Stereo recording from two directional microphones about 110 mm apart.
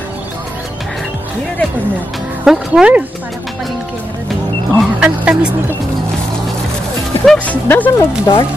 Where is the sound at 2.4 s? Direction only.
10° right (ahead or behind).